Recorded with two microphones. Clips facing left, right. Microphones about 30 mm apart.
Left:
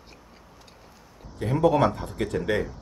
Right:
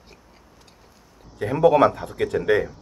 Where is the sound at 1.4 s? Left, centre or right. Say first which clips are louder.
Right 5 dB; right.